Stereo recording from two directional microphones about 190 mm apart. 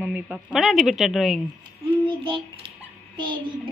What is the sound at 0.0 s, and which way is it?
A woman's voice, 5° right (ahead or behind).